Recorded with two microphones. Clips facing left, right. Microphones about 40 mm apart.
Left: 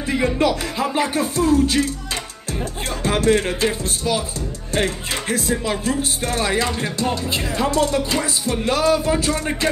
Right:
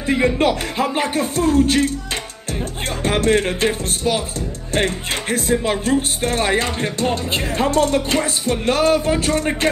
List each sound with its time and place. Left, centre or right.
0.0 s speech: right
3.1 s speech: right